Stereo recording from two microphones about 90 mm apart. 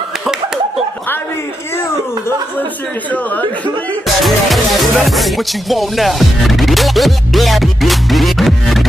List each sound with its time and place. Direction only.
3.1 s speech: 15° left (ahead or behind)
4.2 s music: centre (ahead or behind)